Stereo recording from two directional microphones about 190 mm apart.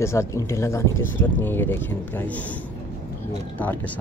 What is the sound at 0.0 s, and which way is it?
Speech, 15° left (ahead or behind).